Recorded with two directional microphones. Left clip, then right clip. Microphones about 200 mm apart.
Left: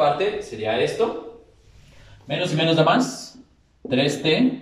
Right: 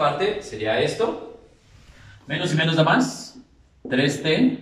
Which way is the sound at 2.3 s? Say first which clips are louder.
Left 2 dB; 15° left (ahead or behind).